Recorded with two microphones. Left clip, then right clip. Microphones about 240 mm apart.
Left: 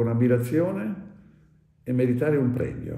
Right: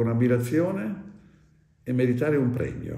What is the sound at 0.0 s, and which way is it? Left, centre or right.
Speech, centre.